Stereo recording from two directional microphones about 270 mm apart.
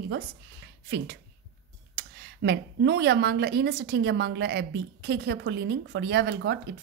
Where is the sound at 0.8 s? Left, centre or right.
Right.